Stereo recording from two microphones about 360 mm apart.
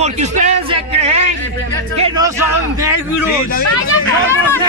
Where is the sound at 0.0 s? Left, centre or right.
Centre.